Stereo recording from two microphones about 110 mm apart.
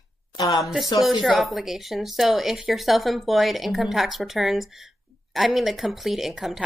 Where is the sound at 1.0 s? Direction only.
Centre (ahead or behind).